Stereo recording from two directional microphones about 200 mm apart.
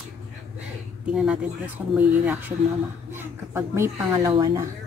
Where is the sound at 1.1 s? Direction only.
5° right (ahead or behind); by 4.7 s 20° right (ahead or behind).